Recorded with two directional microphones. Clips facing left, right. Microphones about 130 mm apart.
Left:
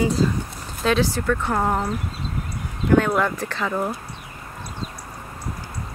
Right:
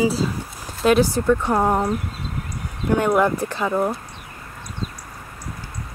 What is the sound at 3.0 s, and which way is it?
Speech, 15° right (ahead or behind).